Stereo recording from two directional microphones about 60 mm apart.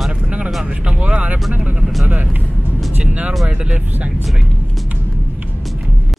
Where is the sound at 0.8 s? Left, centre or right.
Centre.